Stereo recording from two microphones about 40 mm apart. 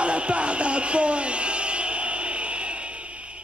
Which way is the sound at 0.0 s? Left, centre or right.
Right.